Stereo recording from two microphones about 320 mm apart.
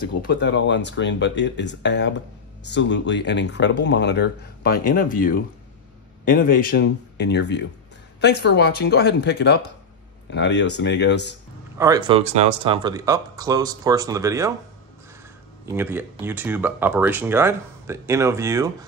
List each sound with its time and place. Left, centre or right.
0.2 s speech: left
11.8 s speech: centre
15.6 s speech: centre